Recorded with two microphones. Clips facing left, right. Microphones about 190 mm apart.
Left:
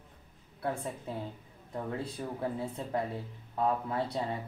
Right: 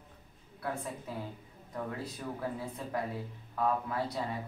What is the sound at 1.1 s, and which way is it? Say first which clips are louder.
Speech: left 2 dB; 25° left (ahead or behind).